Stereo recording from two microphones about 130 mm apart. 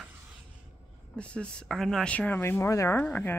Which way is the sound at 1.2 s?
10° left (ahead or behind).